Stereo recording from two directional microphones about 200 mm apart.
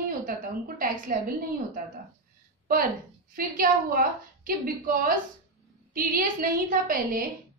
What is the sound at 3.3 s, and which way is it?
A woman's voice, 45° right (ahead or behind).